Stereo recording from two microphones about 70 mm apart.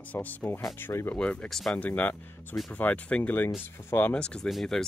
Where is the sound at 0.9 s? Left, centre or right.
Left.